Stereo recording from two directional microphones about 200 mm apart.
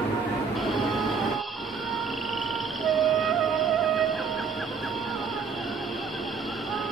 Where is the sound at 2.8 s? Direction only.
Centre (ahead or behind).